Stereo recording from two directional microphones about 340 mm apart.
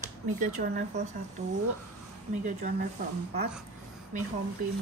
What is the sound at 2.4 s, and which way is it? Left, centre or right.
Speech, right.